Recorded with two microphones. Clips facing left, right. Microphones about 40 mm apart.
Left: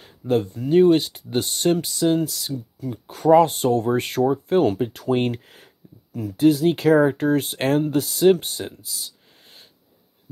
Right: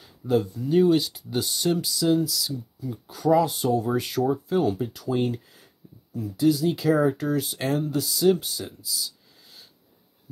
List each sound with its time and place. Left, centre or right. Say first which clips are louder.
0.3 s speech: left 3 dB; left
4.6 s speech: left 5 dB; left
7.1 s speech: left 4 dB; left